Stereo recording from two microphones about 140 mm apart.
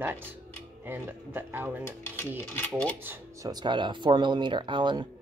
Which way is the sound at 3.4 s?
30° right (ahead or behind).